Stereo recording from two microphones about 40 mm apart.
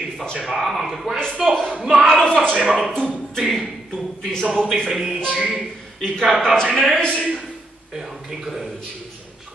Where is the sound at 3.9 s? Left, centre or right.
Centre.